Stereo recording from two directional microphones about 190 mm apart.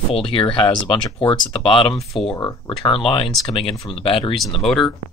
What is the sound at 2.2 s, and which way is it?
Speech, 20° left (ahead or behind).